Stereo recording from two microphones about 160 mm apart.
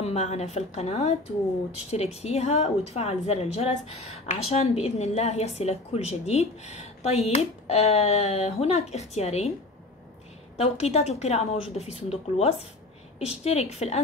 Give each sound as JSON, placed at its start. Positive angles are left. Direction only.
{"t": 0.0, "sound": "a woman's voice", "side_deg": 45}
{"t": 10.6, "sound": "a woman's voice", "side_deg": 40}